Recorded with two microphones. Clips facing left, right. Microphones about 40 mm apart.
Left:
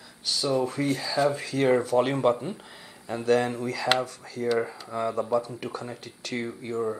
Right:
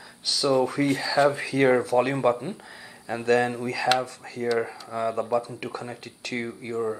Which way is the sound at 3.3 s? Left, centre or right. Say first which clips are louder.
Right 1 dB; centre.